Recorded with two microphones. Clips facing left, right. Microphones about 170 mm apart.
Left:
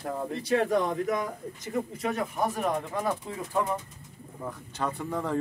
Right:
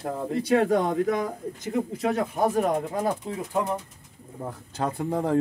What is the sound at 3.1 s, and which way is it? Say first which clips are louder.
Speech: right 3 dB; 15° right (ahead or behind).